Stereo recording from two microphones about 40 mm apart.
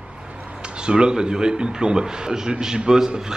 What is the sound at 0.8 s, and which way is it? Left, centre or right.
A man's voice, right.